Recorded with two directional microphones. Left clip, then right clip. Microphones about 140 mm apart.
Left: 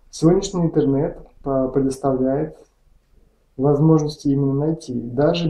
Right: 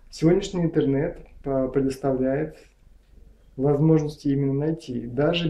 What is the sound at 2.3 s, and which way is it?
Speech, 15° right (ahead or behind).